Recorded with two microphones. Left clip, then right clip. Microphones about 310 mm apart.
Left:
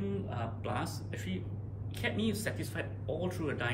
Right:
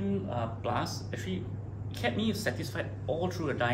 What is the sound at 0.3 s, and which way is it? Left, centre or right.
Speech, centre.